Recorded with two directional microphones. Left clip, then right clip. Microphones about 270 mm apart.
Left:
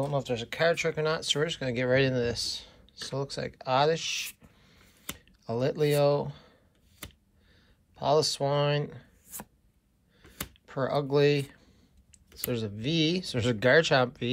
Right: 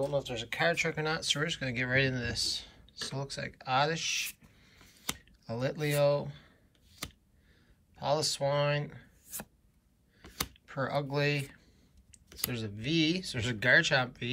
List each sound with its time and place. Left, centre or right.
0.1 s speech: centre
7.9 s speech: centre
10.7 s a sound: centre
12.4 s speech: centre